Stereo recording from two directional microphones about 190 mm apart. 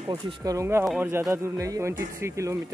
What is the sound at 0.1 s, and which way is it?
Speech, 15° right (ahead or behind).